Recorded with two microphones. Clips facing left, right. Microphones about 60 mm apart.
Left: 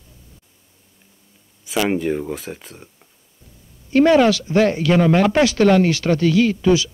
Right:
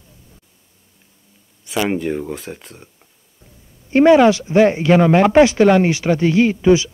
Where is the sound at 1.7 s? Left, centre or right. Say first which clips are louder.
Even; centre.